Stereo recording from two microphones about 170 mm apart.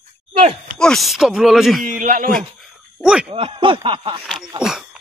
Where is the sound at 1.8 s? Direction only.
50° right (ahead or behind).